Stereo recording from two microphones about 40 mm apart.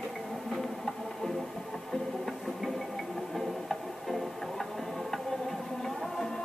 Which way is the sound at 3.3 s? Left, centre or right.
Centre.